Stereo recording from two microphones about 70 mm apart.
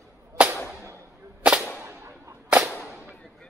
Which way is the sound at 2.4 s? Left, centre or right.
Centre.